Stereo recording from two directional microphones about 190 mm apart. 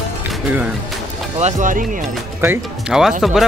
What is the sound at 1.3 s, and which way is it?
Speech, 40° right (ahead or behind).